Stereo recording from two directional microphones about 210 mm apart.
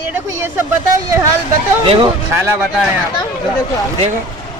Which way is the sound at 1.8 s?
25° right (ahead or behind).